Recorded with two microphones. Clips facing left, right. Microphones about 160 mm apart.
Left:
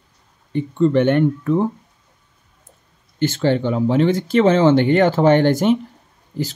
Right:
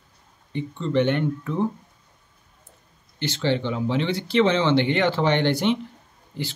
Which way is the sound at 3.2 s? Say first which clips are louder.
Left 6 dB; 45° left (ahead or behind).